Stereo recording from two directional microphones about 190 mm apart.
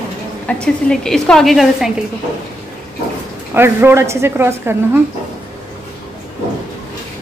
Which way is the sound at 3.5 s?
10° right (ahead or behind).